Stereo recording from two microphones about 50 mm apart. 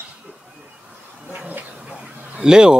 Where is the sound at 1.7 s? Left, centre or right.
Right.